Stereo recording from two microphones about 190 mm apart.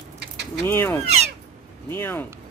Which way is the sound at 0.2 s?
60° right (ahead or behind).